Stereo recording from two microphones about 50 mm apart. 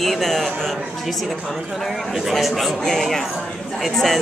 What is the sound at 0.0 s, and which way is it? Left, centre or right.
Speech, centre.